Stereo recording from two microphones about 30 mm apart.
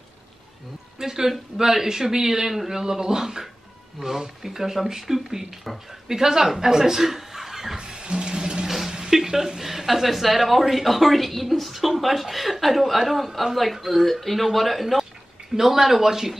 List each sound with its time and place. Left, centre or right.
0.9 s speech: centre
7.7 s music: right
8.6 s a sound: centre
9.1 s speech: centre